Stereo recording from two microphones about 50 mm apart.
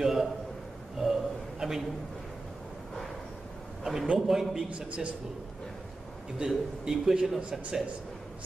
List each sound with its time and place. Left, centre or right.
0.0 s a sound: centre
3.8 s a man's voice: centre
4.6 s a man's voice: right
6.3 s a man's voice: centre